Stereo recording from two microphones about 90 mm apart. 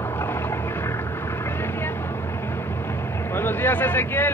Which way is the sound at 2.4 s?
25° left (ahead or behind).